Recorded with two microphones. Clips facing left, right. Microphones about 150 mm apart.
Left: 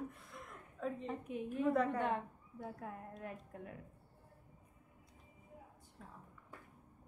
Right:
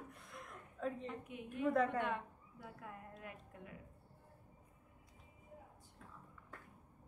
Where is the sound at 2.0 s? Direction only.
30° left (ahead or behind).